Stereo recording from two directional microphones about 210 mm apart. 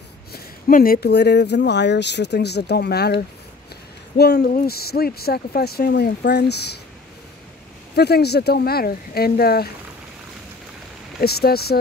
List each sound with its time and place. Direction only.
0.3 s speech: 40° left (ahead or behind)
4.4 s speech: 45° left (ahead or behind)
7.9 s speech: 50° left (ahead or behind)
11.1 s speech: 50° left (ahead or behind)